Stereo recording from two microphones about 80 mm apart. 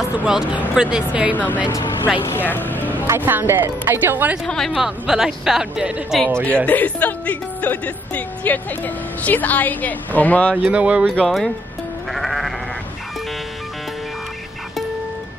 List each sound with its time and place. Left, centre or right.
0.2 s speech: centre
1.3 s speech: left
2.2 s music: left
3.3 s speech: right
4.5 s speech: centre
4.7 s speech: centre
6.4 s speech: centre
10.6 s speech: centre
11.1 s speech: centre
12.1 s sheep: centre